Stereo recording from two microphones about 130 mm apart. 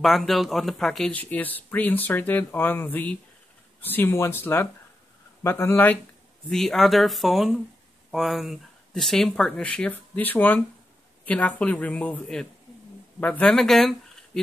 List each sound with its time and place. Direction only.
0.0 s speech: centre (ahead or behind)
6.5 s speech: 5° left (ahead or behind)